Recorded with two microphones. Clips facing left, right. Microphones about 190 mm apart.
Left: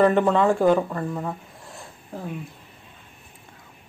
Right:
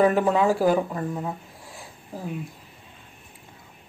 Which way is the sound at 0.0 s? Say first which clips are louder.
Left 1 dB; 5° right (ahead or behind).